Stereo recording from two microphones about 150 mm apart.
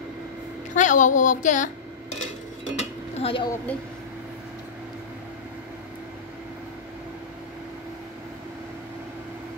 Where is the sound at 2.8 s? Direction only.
40° left (ahead or behind).